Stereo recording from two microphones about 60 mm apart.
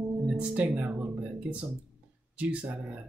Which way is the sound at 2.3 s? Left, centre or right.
Right.